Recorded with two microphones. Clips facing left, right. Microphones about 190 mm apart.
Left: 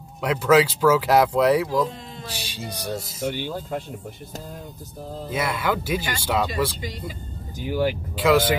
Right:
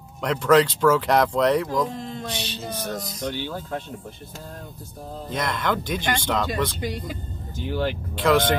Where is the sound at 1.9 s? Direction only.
55° right (ahead or behind).